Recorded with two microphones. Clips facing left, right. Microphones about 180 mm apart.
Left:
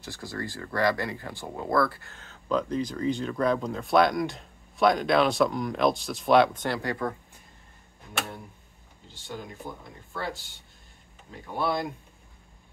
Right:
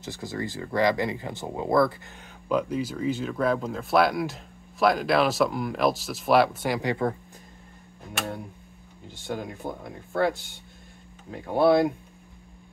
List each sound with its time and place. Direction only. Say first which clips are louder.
0.0 s speech: right 3 dB; 20° right (ahead or behind)
9.3 s speech: right 6 dB; 60° right (ahead or behind)